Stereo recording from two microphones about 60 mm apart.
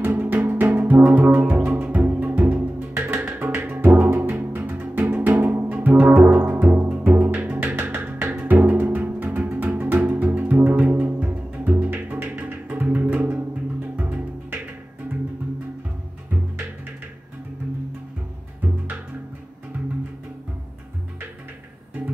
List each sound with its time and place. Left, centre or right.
0.0 s music: right